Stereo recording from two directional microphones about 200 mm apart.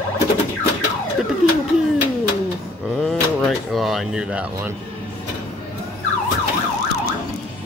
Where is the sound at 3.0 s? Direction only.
Centre (ahead or behind).